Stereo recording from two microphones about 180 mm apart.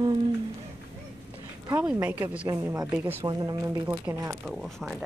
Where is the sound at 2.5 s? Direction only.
20° right (ahead or behind).